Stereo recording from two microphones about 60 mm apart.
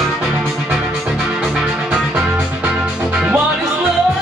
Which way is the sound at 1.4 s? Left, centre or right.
Centre.